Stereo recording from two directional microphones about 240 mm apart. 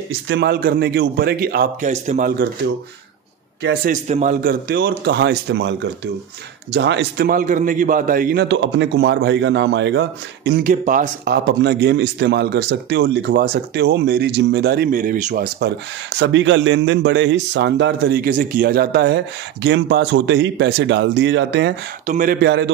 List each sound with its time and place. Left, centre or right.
0.3 s a man's voice: right
3.6 s a man's voice: right
10.7 s a man's voice: right
22.0 s a man's voice: right